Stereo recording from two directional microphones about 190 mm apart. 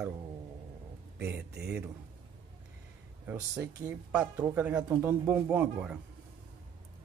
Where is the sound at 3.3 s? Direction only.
15° right (ahead or behind).